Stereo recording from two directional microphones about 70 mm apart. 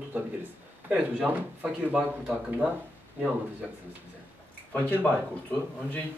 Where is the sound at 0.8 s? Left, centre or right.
Right.